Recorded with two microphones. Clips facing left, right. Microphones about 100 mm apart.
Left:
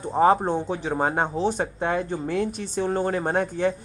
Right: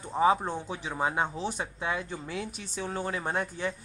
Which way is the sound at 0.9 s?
50° left (ahead or behind).